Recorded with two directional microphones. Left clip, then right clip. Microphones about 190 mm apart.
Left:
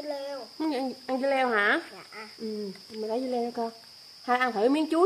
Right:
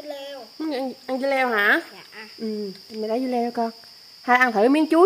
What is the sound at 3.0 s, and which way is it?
Speech, 40° right (ahead or behind).